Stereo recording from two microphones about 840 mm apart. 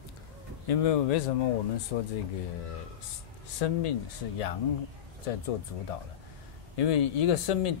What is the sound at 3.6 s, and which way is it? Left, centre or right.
Speech, left.